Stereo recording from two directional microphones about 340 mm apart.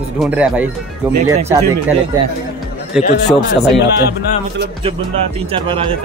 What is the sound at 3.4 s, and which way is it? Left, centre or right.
Speech, left.